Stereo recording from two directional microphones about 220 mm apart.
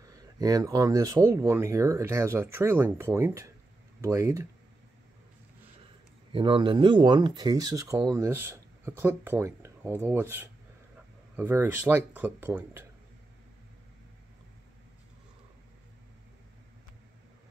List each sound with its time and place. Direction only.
0.0 s speech: 15° right (ahead or behind)
6.3 s speech: 25° right (ahead or behind)